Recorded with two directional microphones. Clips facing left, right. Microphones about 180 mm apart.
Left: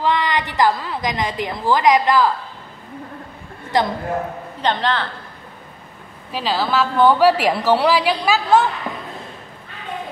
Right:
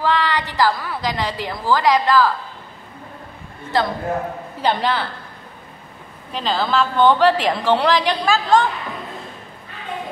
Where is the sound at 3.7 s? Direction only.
15° left (ahead or behind).